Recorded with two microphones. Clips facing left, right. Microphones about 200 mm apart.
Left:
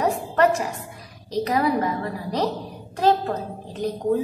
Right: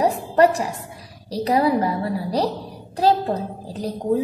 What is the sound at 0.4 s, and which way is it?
A woman's voice, 35° right (ahead or behind).